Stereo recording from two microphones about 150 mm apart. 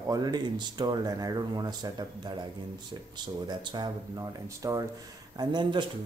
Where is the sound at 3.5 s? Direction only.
30° right (ahead or behind).